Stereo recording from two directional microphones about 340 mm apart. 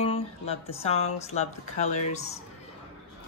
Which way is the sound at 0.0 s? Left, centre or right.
Centre.